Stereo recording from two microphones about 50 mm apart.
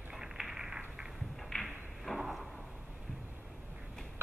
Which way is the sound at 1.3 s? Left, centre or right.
Centre.